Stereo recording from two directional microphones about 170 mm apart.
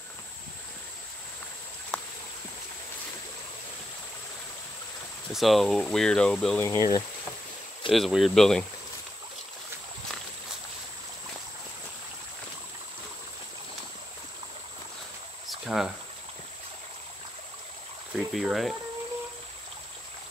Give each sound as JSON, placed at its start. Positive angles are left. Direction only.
{"t": 1.9, "sound": "a sound", "side_deg": 5}
{"t": 5.3, "sound": "speech", "side_deg": 0}
{"t": 6.6, "sound": "speech", "side_deg": 20}
{"t": 7.9, "sound": "speech", "side_deg": 0}
{"t": 15.4, "sound": "a sound", "side_deg": 0}
{"t": 18.1, "sound": "speech", "side_deg": 0}